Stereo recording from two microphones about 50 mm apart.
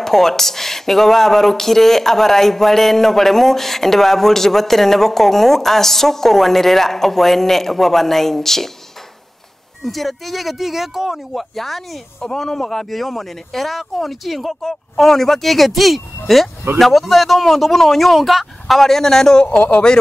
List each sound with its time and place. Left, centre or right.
0.0 s speech: centre
9.8 s speech: centre
14.6 s speech: centre
19.4 s speech: left